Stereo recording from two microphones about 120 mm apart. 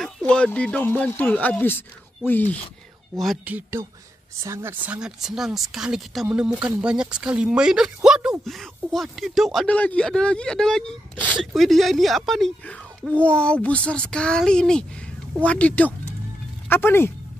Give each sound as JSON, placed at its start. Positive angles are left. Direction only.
{"t": 0.3, "sound": "speech", "side_deg": 10}
{"t": 3.4, "sound": "a woman's voice", "side_deg": -15}